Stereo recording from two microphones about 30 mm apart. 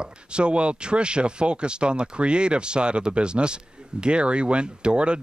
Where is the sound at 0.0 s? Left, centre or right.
Right.